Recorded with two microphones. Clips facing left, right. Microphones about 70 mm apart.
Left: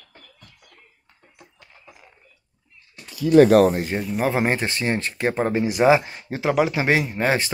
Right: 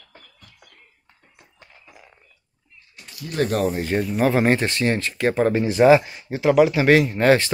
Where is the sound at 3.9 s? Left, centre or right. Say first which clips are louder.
Right 3 dB; centre.